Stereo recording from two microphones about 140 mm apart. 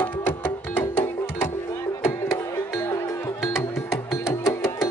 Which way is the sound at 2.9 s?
20° left (ahead or behind).